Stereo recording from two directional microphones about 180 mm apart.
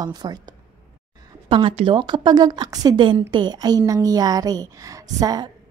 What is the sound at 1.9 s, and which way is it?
A woman's voice, 25° right (ahead or behind).